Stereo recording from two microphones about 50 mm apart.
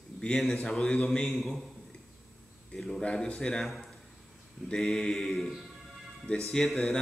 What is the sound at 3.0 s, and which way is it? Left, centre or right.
Speech, left.